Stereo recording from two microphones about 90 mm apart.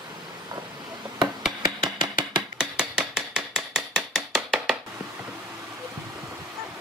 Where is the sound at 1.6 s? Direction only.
50° right (ahead or behind).